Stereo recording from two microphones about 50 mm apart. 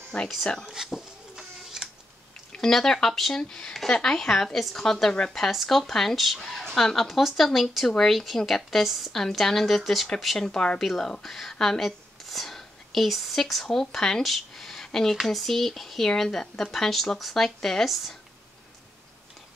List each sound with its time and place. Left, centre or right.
0.1 s speech: centre
0.7 s a sound: centre
2.5 s speech: centre